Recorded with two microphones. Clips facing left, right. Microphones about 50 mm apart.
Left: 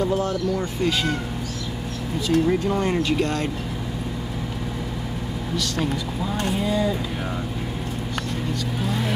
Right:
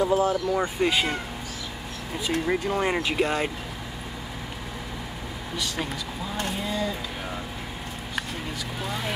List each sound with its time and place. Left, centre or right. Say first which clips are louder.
0.0 s speech: even; centre
2.1 s speech: left 5 dB; centre
6.3 s a sound: left 6 dB; centre
8.8 s speech: left 4 dB; centre